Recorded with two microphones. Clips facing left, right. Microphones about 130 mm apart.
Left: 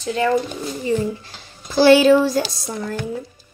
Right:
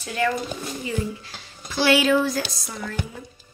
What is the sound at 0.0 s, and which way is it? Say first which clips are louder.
Speech: left 4 dB; 25° left (ahead or behind).